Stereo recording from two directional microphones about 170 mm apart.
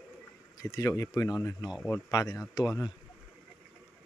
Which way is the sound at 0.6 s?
20° left (ahead or behind).